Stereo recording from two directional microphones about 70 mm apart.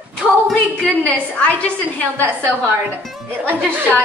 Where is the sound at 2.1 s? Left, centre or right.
Right.